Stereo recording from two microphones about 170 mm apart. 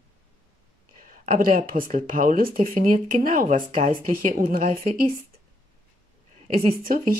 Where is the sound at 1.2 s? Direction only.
55° right (ahead or behind).